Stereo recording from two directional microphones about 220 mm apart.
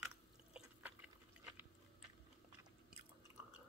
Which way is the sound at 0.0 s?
5° right (ahead or behind).